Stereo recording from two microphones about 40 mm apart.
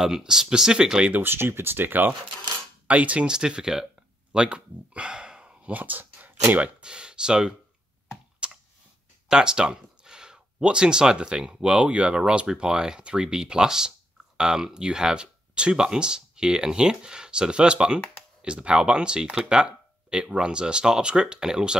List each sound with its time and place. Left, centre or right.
0.0 s speech: centre
1.2 s speech: right
2.9 s speech: right
3.2 s speech: centre
5.7 s speech: right
6.6 s speech: right
8.4 s clicking: right
9.3 s speech: centre